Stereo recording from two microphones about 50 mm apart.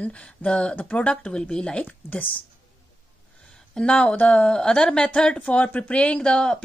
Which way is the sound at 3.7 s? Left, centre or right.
Centre.